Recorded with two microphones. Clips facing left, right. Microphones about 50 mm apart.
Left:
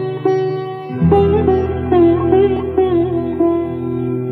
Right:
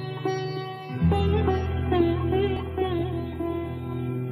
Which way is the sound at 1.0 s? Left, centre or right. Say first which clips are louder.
Left 14 dB; left.